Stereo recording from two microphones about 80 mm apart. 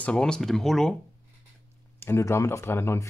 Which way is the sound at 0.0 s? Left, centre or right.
Centre.